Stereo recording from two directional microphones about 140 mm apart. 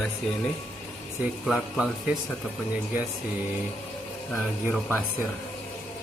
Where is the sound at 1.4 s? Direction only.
Centre (ahead or behind).